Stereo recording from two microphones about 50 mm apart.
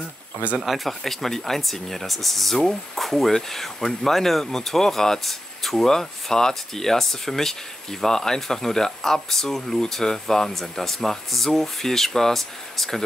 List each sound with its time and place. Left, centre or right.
0.6 s speech: centre